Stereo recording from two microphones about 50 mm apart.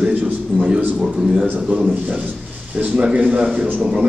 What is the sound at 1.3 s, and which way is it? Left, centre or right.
Speech, centre.